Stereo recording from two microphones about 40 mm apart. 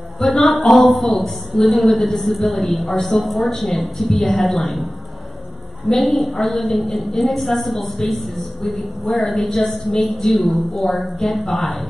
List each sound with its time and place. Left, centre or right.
0.2 s a woman's voice: centre
0.8 s a woman's voice: centre
5.9 s a woman's voice: centre